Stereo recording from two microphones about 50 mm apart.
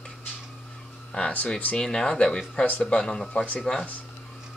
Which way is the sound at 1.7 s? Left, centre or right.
Centre.